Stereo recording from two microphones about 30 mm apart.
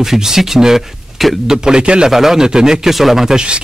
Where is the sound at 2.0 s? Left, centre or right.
Centre.